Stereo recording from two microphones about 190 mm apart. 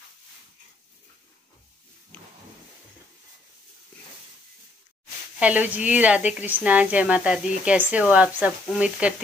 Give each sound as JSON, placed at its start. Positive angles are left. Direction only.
{"t": 5.4, "sound": "speech", "side_deg": -10}